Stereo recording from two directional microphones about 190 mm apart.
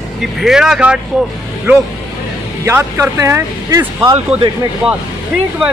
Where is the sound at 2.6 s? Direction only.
10° right (ahead or behind).